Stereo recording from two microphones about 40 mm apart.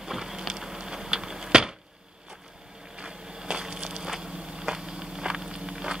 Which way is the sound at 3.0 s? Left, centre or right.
Centre.